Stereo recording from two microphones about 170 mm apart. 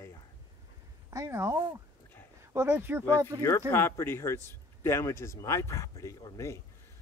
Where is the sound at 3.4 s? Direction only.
15° left (ahead or behind).